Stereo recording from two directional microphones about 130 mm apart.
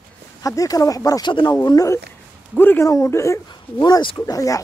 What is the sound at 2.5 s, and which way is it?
Speech, 15° left (ahead or behind).